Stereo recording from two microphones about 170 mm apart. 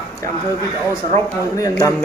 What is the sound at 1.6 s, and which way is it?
Speech, 20° left (ahead or behind).